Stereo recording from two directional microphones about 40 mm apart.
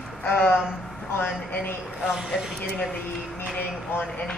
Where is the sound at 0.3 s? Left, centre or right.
Left.